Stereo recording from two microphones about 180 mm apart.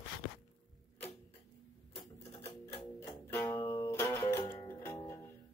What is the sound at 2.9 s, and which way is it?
Music, 15° left (ahead or behind).